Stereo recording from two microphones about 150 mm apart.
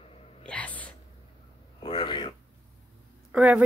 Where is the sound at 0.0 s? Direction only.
40° left (ahead or behind).